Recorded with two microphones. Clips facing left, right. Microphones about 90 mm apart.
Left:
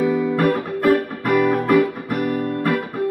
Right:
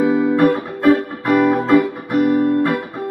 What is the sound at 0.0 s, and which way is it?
Guitar, 20° right (ahead or behind).